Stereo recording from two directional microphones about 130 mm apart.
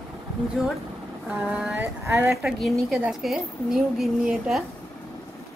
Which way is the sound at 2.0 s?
20° right (ahead or behind).